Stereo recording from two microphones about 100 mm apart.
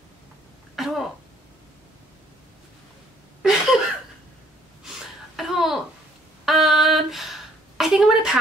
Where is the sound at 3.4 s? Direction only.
5° right (ahead or behind).